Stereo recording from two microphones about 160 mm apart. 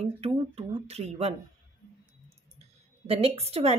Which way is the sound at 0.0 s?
40° right (ahead or behind).